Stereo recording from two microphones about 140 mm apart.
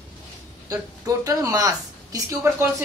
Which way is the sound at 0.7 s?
25° right (ahead or behind).